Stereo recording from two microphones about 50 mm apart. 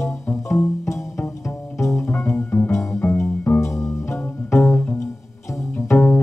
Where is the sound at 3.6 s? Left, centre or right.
Left.